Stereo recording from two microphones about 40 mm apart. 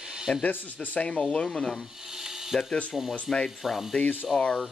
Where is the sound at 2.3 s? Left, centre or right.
Centre.